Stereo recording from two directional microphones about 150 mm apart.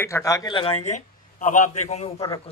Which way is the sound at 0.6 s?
40° left (ahead or behind).